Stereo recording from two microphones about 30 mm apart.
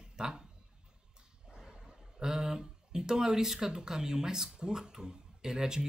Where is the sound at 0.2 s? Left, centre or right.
Right.